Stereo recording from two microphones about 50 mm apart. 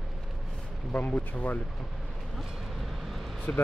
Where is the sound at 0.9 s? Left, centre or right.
Left.